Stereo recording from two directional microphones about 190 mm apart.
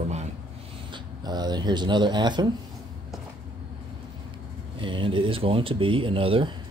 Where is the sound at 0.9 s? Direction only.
20° right (ahead or behind).